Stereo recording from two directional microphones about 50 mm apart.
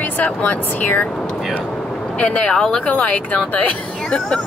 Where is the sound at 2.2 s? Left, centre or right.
Centre.